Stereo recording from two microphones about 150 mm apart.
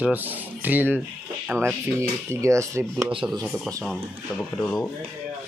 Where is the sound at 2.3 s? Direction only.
20° right (ahead or behind).